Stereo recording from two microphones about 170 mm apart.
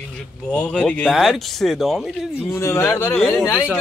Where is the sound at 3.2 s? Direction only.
5° left (ahead or behind).